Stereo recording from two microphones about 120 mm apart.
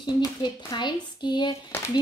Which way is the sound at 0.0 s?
40° left (ahead or behind).